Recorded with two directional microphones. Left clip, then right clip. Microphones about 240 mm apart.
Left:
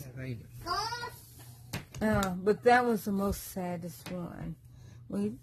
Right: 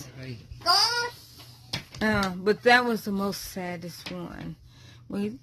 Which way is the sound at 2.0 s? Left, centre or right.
Right.